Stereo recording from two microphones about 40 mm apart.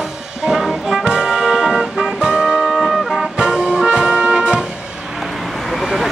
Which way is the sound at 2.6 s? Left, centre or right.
Centre.